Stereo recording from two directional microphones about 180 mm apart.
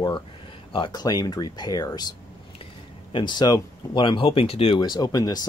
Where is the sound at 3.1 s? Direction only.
25° left (ahead or behind).